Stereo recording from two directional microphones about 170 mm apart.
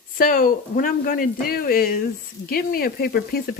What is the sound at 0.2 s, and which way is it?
Speech, 55° left (ahead or behind).